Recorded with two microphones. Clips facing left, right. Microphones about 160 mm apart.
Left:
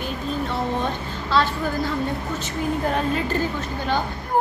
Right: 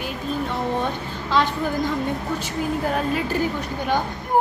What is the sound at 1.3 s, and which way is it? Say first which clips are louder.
Speech: even; 15° right (ahead or behind).